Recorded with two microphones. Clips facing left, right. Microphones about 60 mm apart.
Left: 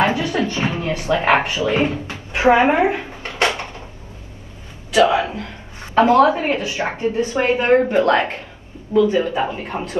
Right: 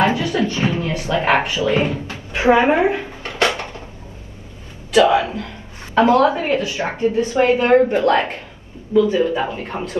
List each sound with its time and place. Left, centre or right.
0.2 s a sound: left
4.9 s a woman's voice: left
8.9 s a man's voice: left
9.5 s a woman's voice: left